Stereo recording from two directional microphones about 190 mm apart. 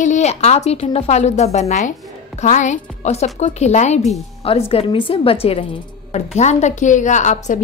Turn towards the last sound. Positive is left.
turn(degrees=40)  # may be behind; listen again after turning